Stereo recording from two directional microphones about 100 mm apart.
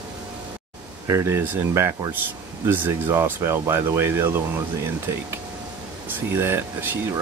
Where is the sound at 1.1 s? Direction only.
25° right (ahead or behind).